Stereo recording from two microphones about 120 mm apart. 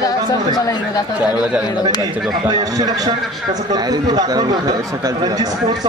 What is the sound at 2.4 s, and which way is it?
Speech, 30° right (ahead or behind).